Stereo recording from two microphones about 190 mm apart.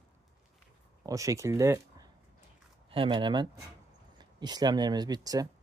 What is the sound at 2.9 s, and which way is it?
Speech, 25° right (ahead or behind).